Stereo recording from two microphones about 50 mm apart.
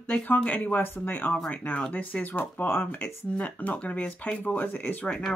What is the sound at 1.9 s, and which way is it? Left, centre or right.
Speech, left.